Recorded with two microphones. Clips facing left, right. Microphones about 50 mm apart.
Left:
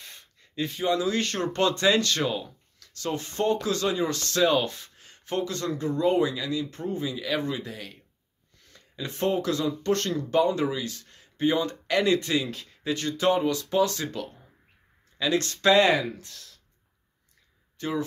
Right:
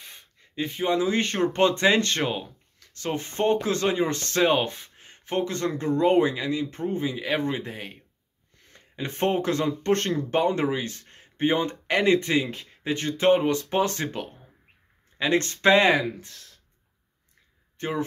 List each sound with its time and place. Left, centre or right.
0.0 s speech: centre
17.7 s speech: right